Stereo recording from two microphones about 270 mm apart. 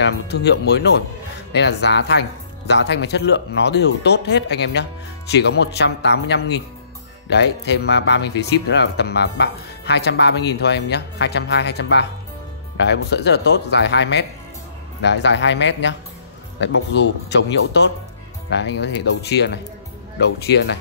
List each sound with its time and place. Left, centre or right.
0.0 s speech: left